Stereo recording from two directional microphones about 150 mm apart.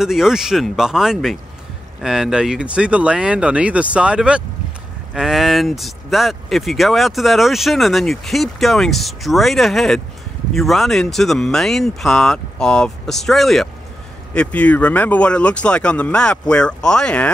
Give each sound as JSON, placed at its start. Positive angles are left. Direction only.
{"t": 0.0, "sound": "speech", "side_deg": -5}